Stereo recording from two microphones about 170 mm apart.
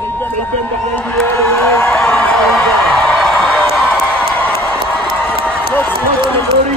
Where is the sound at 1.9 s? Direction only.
5° left (ahead or behind).